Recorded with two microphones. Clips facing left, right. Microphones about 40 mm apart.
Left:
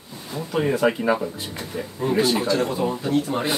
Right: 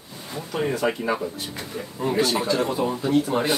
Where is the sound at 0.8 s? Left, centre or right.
Centre.